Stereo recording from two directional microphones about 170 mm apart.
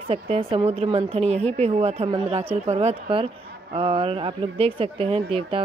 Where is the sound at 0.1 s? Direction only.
35° right (ahead or behind).